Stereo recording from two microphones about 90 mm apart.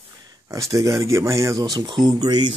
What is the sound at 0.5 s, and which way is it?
Speech, 35° right (ahead or behind).